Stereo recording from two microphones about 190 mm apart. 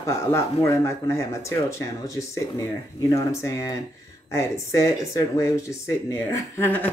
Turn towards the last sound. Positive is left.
turn(degrees=10)  # may be behind; listen again after turning